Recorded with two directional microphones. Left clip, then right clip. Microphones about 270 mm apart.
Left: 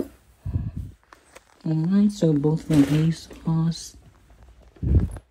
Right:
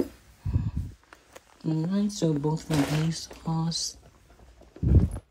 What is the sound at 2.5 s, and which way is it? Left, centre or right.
Speech, right.